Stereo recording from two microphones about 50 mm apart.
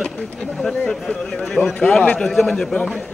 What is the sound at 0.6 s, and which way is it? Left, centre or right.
A man's voice, centre.